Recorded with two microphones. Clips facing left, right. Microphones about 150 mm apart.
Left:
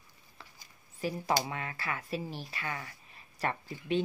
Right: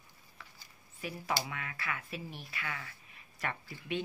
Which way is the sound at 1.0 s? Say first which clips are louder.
Left 5 dB; 35° left (ahead or behind).